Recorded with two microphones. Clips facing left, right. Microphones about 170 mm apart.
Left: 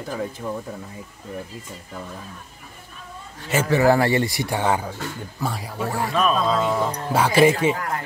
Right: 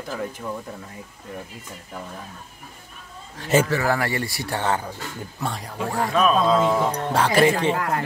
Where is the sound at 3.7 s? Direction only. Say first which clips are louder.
Left 6 dB; 30° left (ahead or behind); by 7.7 s 10° left (ahead or behind).